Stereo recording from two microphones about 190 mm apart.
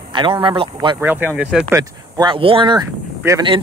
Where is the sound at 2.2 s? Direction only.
25° right (ahead or behind).